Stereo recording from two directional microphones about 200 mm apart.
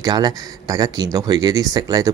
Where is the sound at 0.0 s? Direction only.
20° right (ahead or behind).